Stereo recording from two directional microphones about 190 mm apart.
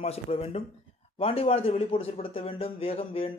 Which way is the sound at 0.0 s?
35° left (ahead or behind).